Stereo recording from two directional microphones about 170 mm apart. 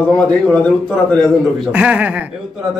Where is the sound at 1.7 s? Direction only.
5° right (ahead or behind).